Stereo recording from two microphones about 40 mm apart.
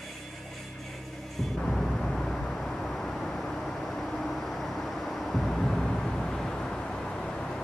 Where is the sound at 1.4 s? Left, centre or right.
Centre.